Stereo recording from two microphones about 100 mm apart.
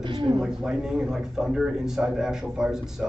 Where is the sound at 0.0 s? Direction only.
50° right (ahead or behind).